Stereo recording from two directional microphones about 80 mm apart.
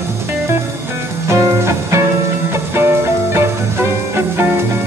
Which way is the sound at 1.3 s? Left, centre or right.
Right.